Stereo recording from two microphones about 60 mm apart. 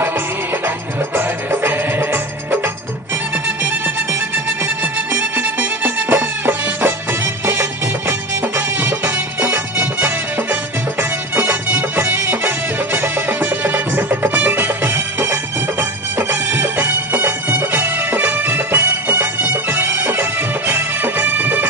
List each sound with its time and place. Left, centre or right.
1.1 s music: right
3.4 s music: right
5.1 s music: right
8.1 s music: right